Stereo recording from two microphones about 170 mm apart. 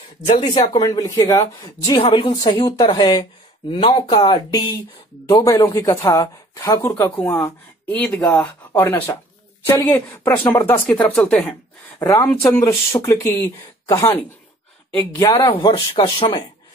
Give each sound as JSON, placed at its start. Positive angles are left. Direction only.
{"t": 0.4, "sound": "speech", "side_deg": 25}
{"t": 12.0, "sound": "speech", "side_deg": 20}
{"t": 12.3, "sound": "speech", "side_deg": 5}
{"t": 12.5, "sound": "speech", "side_deg": 15}
{"t": 15.1, "sound": "speech", "side_deg": 20}